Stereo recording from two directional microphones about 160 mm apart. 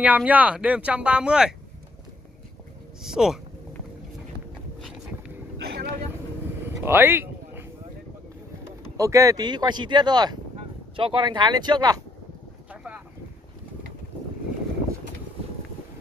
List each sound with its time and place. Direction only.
0.0 s speech: 10° right (ahead or behind)
3.0 s speech: 5° right (ahead or behind)
5.7 s vehicle: 75° right (ahead or behind)
6.8 s a sound: 15° right (ahead or behind)
8.6 s speech: 20° right (ahead or behind)